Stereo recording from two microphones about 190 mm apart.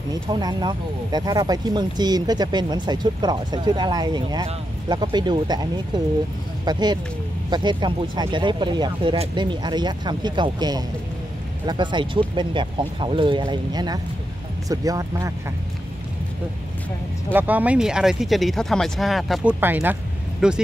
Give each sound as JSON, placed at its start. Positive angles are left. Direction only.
{"t": 0.1, "sound": "speech", "side_deg": -20}
{"t": 17.3, "sound": "speech", "side_deg": -10}